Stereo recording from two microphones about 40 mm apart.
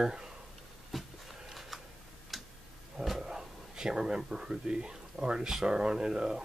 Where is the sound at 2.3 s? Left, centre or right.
Centre.